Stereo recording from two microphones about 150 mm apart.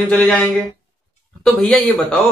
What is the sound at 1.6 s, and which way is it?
Speech, centre (ahead or behind).